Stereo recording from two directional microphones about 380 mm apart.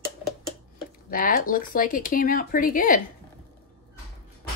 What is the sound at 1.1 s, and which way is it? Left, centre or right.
Speech, left.